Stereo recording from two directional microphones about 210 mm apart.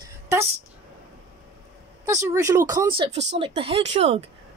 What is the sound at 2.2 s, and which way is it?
Speech, 15° right (ahead or behind).